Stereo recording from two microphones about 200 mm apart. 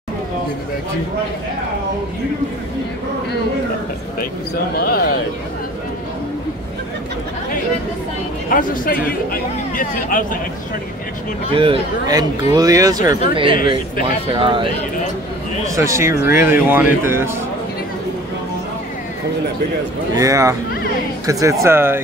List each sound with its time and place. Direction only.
4.7 s speech: 50° left (ahead or behind)
8.5 s speech: 45° left (ahead or behind)
11.5 s speech: 25° right (ahead or behind)
15.6 s speech: 15° right (ahead or behind)
20.2 s speech: 15° right (ahead or behind)